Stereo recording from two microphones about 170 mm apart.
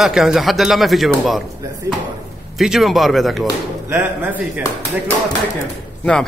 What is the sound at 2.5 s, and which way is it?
Speech, centre (ahead or behind).